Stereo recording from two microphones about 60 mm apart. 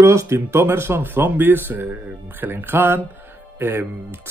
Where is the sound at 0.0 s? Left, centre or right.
Right.